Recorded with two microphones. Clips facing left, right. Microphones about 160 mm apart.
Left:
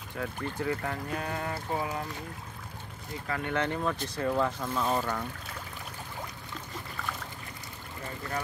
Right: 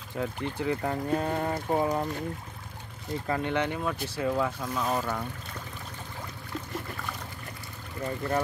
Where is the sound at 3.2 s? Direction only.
25° right (ahead or behind).